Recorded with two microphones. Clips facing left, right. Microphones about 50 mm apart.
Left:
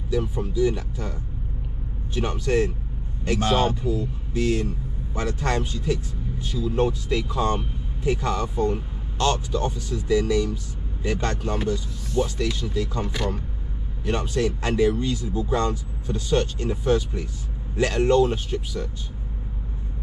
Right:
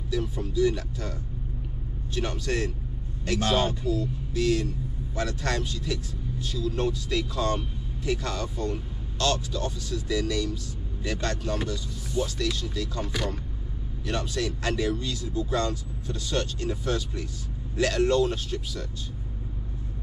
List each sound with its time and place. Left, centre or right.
0.1 s speech: left
2.1 s speech: left
3.8 s speech: left